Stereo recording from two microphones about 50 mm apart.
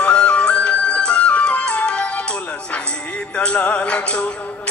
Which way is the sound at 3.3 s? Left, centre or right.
Left.